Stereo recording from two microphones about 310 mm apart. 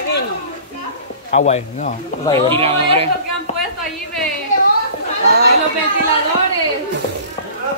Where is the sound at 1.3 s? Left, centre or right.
Left.